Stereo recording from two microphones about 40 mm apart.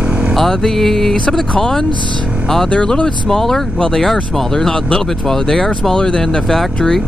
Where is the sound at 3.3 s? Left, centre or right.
Centre.